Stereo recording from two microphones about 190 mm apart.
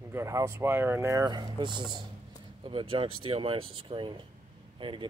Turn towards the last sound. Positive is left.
turn(degrees=-25)  # may be behind; listen again after turning